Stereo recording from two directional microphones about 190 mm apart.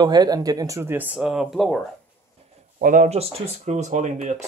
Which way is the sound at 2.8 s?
45° right (ahead or behind).